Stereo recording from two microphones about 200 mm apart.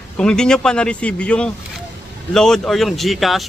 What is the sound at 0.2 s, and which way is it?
Speech, 5° left (ahead or behind).